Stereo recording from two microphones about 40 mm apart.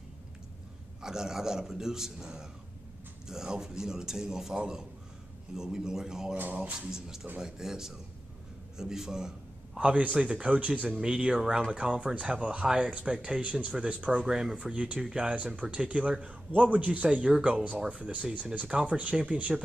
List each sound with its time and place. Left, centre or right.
1.0 s a man's voice: centre
6.3 s speech: right
6.9 s a man's voice: centre
9.8 s a man's voice: right
11.0 s a man's voice: right
12.6 s a man's voice: centre
13.4 s a man's voice: right
14.1 s a man's voice: centre
14.6 s a man's voice: right